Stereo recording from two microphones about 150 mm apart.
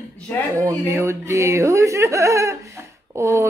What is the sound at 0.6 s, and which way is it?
A woman's voice, 20° right (ahead or behind).